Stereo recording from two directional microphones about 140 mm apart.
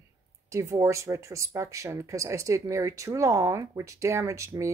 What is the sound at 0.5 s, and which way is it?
Speech, 20° right (ahead or behind).